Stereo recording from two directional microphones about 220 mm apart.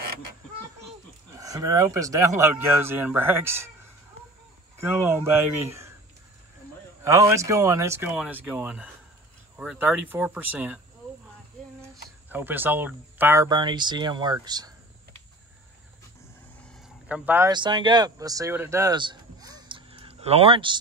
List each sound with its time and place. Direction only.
1.3 s speech: 15° right (ahead or behind)
4.7 s speech: 10° right (ahead or behind)
7.0 s speech: 15° right (ahead or behind)
12.3 s speech: 10° right (ahead or behind)
17.1 s speech: 10° right (ahead or behind)
17.5 s speech: 20° right (ahead or behind)